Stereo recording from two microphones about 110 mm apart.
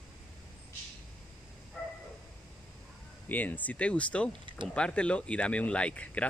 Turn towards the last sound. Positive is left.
turn(degrees=10)  # may be behind; listen again after turning